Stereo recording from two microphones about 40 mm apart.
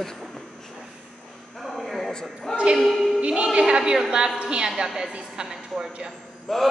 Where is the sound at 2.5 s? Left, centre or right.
Right.